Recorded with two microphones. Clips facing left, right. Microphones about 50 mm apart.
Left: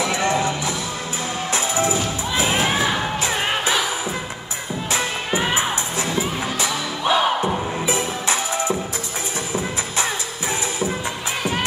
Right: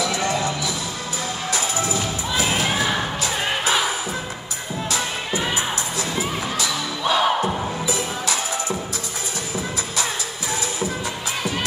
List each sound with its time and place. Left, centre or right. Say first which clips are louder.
0.0 s music: left 2 dB; left
4.9 s music: left 3 dB; left
7.1 s crowd: left 1 dB; centre
7.4 s music: left 2 dB; left